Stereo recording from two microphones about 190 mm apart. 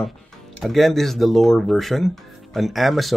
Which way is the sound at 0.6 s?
Centre (ahead or behind).